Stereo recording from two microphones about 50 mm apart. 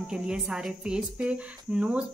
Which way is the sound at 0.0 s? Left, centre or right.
Centre.